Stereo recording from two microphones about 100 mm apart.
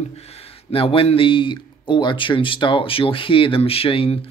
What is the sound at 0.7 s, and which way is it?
Speech, 65° left (ahead or behind).